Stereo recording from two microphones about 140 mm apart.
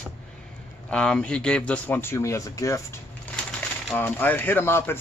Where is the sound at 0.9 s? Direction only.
5° left (ahead or behind); by 2.8 s 20° left (ahead or behind).